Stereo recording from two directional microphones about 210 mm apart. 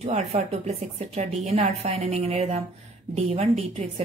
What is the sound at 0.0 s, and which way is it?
A woman's voice, 30° right (ahead or behind).